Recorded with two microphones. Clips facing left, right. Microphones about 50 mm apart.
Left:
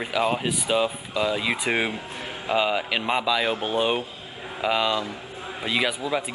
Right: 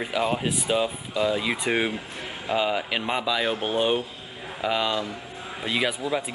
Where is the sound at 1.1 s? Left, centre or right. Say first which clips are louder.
Even; centre.